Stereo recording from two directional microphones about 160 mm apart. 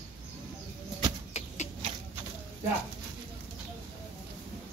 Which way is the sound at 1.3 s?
45° left (ahead or behind).